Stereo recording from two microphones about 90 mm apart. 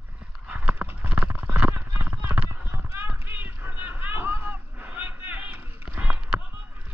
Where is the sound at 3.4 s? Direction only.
20° right (ahead or behind).